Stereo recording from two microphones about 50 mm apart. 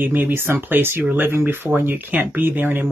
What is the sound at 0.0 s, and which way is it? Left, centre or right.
Speech, right.